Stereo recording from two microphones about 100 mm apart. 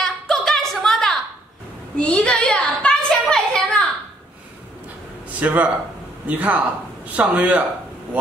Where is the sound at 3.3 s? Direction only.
5° left (ahead or behind).